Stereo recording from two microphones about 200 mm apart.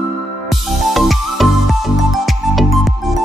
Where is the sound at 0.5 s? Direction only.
Centre (ahead or behind).